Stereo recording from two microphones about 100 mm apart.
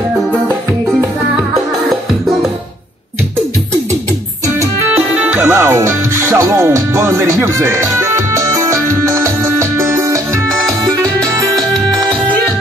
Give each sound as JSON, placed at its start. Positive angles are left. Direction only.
{"t": 4.8, "sound": "music", "side_deg": -15}
{"t": 11.6, "sound": "music", "side_deg": 5}